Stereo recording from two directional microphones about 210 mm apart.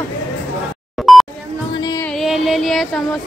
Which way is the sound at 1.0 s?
Centre (ahead or behind).